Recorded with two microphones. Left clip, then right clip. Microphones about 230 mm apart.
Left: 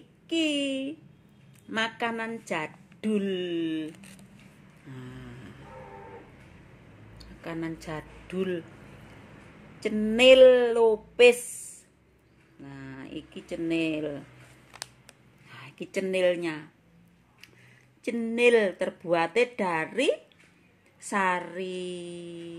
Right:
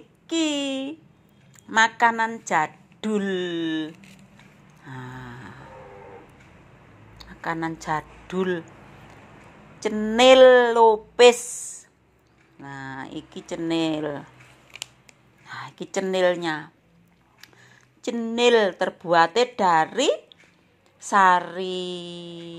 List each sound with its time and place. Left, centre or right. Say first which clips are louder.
0.3 s a woman's voice: right 3 dB; centre
4.8 s a sound: right 7 dB; centre
7.2 s speech: right 8 dB; centre
9.8 s a woman's voice: right 4 dB; centre
12.6 s a woman's voice: right 9 dB; centre
15.4 s speech: right 7 dB; centre
18.0 s a woman's voice: right 3 dB; centre